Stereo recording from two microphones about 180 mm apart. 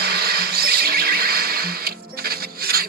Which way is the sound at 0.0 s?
60° right (ahead or behind).